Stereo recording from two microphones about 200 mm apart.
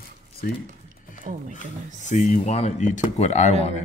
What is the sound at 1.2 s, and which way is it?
Speech, 40° right (ahead or behind).